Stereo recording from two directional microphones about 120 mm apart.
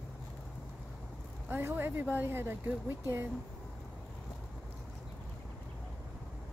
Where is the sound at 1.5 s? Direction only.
20° right (ahead or behind).